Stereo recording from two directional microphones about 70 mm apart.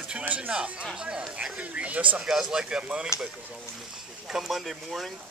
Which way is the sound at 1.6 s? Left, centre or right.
Centre.